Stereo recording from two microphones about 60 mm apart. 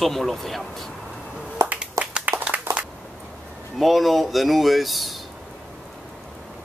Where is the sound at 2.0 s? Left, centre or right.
Right.